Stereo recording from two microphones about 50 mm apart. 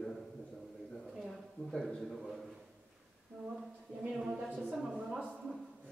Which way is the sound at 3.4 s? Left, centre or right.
Centre.